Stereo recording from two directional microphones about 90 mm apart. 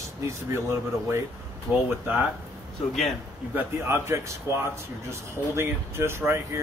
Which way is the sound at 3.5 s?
25° right (ahead or behind).